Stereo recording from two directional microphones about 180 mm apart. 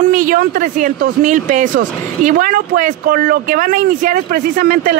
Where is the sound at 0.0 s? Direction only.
50° right (ahead or behind).